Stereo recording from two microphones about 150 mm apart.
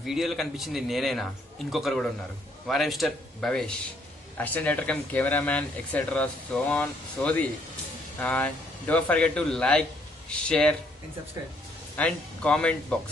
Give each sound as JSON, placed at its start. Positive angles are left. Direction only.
{"t": 0.0, "sound": "a man's voice", "side_deg": 0}
{"t": 12.0, "sound": "speech", "side_deg": 10}